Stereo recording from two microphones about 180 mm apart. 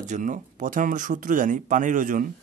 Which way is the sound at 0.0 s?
45° right (ahead or behind).